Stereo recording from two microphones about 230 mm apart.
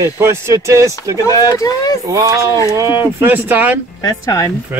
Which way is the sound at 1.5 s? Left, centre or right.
Centre.